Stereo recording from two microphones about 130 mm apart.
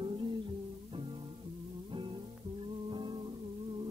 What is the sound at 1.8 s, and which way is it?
Music, 40° right (ahead or behind).